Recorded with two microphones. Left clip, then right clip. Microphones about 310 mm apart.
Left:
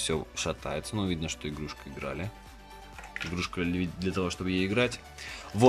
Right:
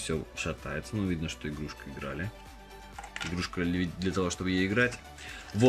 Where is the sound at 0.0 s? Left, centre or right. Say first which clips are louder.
Left 3 dB; centre.